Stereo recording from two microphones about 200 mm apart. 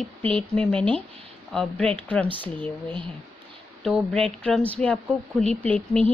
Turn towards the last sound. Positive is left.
turn(degrees=5)  # may be behind; listen again after turning